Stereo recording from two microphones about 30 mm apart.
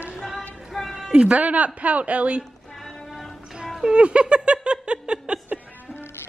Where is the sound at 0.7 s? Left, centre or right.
Centre.